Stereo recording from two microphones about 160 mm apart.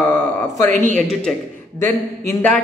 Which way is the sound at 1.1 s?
Centre (ahead or behind).